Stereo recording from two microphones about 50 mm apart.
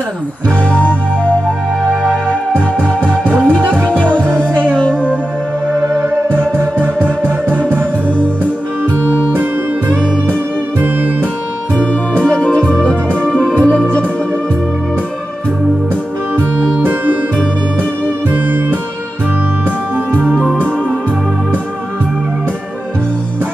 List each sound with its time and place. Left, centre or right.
0.7 s music: left
2.5 s music: left
5.7 s music: right
7.4 s music: right
8.9 s music: right
11.7 s music: left
16.8 s organ: right
18.3 s music: right